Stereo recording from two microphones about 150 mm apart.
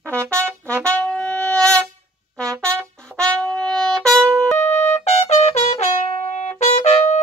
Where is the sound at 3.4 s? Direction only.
5° left (ahead or behind).